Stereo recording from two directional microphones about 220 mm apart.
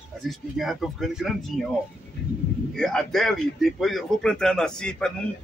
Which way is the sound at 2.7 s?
5° left (ahead or behind).